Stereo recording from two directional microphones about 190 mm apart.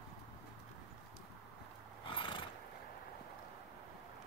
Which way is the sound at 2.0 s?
25° left (ahead or behind).